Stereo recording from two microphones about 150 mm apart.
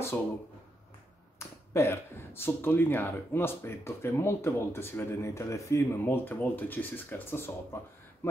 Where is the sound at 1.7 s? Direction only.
15° left (ahead or behind).